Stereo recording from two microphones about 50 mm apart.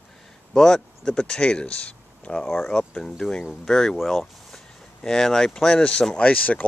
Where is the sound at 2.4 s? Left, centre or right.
Centre.